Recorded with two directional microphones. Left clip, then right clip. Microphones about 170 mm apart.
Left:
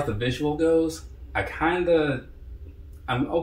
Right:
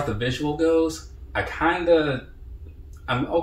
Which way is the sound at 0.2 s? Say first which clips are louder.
Right 1 dB; 10° left (ahead or behind).